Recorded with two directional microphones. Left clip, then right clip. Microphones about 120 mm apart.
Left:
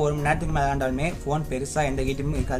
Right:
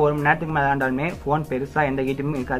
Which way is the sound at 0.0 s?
35° left (ahead or behind).